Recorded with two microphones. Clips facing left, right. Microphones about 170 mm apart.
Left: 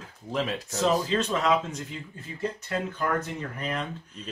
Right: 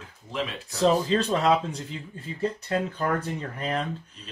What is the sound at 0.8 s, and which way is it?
Speech, 35° right (ahead or behind).